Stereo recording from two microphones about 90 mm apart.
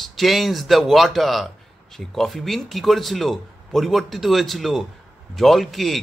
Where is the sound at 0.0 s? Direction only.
Centre (ahead or behind).